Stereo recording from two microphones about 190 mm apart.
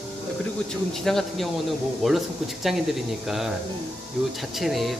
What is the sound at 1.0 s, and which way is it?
Speech, centre (ahead or behind).